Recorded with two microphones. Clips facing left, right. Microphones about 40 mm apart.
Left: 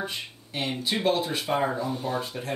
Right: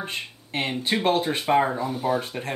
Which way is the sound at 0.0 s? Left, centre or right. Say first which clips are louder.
Right 1 dB; right.